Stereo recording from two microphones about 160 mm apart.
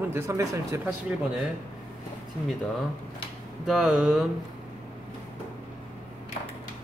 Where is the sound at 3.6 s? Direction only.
Centre (ahead or behind).